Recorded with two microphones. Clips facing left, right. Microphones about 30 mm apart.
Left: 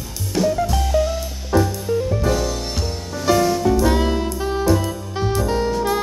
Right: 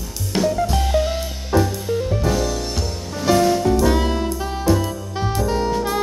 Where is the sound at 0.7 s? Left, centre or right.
Right.